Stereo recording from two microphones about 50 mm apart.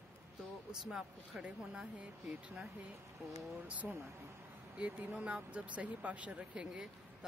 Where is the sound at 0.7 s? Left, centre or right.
Centre.